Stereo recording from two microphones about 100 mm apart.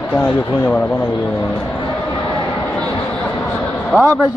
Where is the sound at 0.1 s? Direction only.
15° left (ahead or behind).